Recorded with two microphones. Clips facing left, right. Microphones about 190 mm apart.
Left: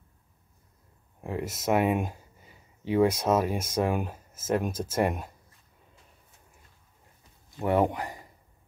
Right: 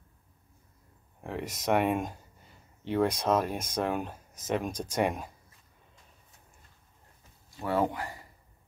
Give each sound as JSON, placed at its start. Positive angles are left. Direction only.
{"t": 1.2, "sound": "speech", "side_deg": 5}
{"t": 7.6, "sound": "speech", "side_deg": 20}